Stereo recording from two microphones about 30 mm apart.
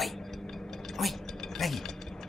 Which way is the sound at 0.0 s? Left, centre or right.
Centre.